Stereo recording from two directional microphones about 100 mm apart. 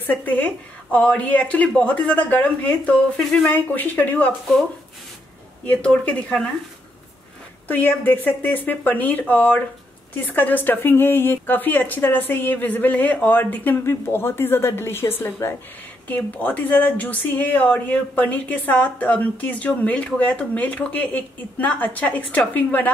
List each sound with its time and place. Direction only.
0.0 s speech: 15° left (ahead or behind)
3.5 s speech: 20° left (ahead or behind)
5.7 s speech: 10° left (ahead or behind)
7.6 s speech: 20° left (ahead or behind)